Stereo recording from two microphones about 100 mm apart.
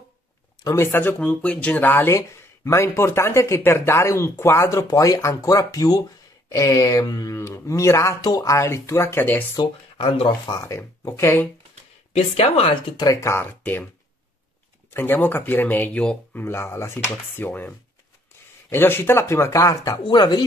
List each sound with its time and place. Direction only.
0.7 s speech: 25° left (ahead or behind)
2.1 s speech: 30° left (ahead or behind)
8.2 s speech: 40° left (ahead or behind)
8.5 s speech: 30° left (ahead or behind)
9.9 s speech: 60° left (ahead or behind)
10.6 s speech: 30° left (ahead or behind)
12.1 s speech: 80° left
12.9 s speech: 35° left (ahead or behind); by 13.8 s 20° left (ahead or behind)
14.9 s speech: 20° left (ahead or behind); by 20.4 s 45° left (ahead or behind)